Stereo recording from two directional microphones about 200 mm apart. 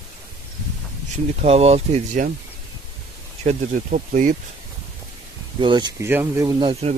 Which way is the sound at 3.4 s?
45° right (ahead or behind).